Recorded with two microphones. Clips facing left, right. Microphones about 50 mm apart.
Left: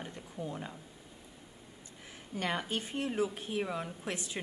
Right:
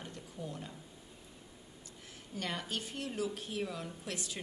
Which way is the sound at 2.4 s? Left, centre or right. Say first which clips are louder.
Left 4 dB; left.